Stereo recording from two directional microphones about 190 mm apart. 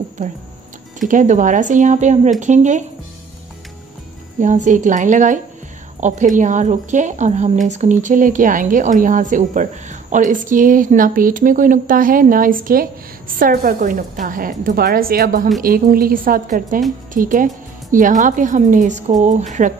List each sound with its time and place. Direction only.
1.0 s speech: 40° right (ahead or behind)
4.4 s a woman's voice: 40° right (ahead or behind)